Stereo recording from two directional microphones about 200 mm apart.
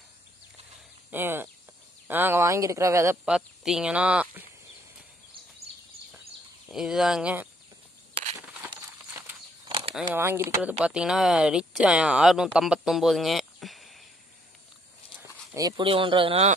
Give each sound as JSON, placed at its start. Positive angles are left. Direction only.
{"t": 1.1, "sound": "a woman's voice", "side_deg": -10}
{"t": 6.7, "sound": "speech", "side_deg": 0}
{"t": 8.6, "sound": "a sound", "side_deg": -10}
{"t": 9.7, "sound": "a sound", "side_deg": -25}
{"t": 10.1, "sound": "a woman's voice", "side_deg": -10}
{"t": 15.5, "sound": "speech", "side_deg": -20}